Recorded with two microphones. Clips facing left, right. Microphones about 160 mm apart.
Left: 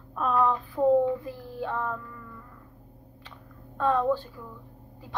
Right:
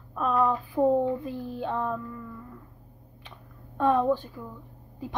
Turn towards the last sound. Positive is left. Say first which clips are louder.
# right 2 dB
turn(degrees=-15)  # may be behind; listen again after turning